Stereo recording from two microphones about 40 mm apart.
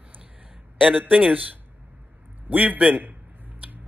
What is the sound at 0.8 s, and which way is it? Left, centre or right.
Speech, right.